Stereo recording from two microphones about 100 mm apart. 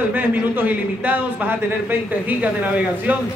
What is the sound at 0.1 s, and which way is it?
A man's voice, 15° right (ahead or behind).